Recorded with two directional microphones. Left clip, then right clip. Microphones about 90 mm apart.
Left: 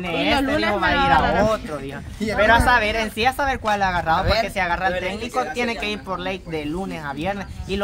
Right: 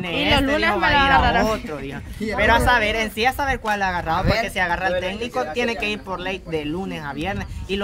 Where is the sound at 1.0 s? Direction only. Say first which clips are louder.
Even; 30° right (ahead or behind).